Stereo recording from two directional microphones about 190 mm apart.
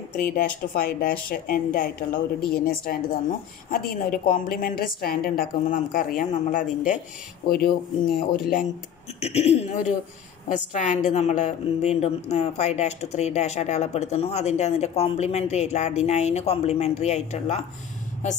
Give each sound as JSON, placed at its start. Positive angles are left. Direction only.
{"t": 0.1, "sound": "a woman's voice", "side_deg": 45}
{"t": 7.4, "sound": "a woman's voice", "side_deg": 55}
{"t": 9.2, "sound": "a woman's voice", "side_deg": 35}